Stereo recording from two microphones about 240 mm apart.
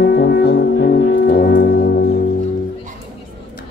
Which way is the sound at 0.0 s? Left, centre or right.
Left.